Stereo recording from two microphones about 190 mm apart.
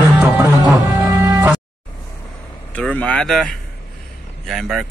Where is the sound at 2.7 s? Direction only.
5° left (ahead or behind).